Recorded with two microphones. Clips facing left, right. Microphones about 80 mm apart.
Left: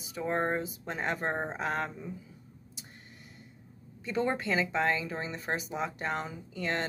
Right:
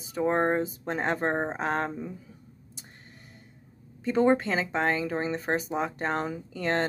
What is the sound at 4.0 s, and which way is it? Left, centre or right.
Speech, right.